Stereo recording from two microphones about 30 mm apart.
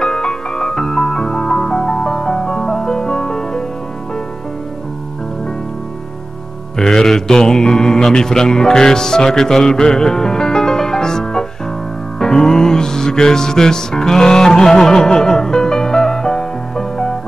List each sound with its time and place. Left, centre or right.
0.0 s music: left
6.8 s mantra: centre
7.2 s speech: centre
12.2 s music: left